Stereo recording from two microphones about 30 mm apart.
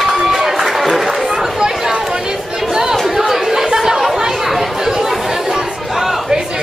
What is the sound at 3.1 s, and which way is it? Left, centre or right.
Chatter, centre.